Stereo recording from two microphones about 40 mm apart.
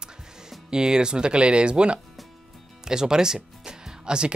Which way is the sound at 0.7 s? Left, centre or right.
Centre.